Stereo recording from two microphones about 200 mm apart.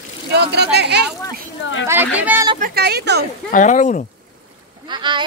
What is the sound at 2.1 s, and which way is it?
Speech, 10° right (ahead or behind).